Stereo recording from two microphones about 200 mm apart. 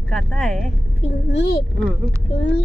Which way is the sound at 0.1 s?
5° left (ahead or behind).